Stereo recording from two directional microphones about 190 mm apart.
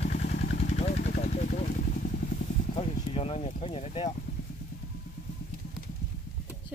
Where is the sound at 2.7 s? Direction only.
30° left (ahead or behind).